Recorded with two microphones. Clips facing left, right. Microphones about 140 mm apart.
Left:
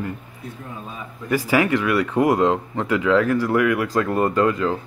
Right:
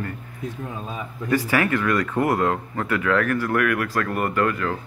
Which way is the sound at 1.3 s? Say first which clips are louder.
Left 2 dB; 15° left (ahead or behind).